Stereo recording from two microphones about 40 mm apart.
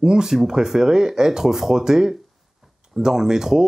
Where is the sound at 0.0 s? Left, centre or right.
Centre.